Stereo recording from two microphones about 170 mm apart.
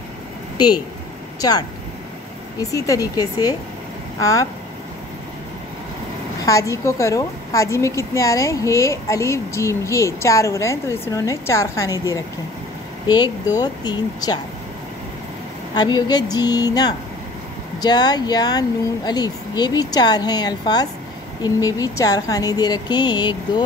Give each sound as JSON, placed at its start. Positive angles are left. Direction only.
{"t": 2.6, "sound": "speech", "side_deg": 20}
{"t": 6.4, "sound": "a woman's voice", "side_deg": 20}
{"t": 15.7, "sound": "speech", "side_deg": 25}